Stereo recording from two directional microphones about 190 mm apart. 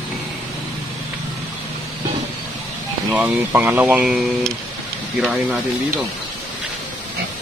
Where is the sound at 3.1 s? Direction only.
10° right (ahead or behind).